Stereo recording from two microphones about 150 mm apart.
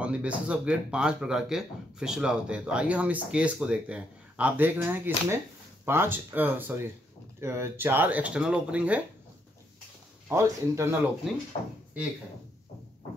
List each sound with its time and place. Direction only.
0.0 s speech: 10° right (ahead or behind)
10.2 s speech: 20° right (ahead or behind)